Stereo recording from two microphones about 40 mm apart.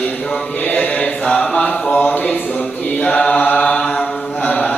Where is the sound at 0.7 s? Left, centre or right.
Left.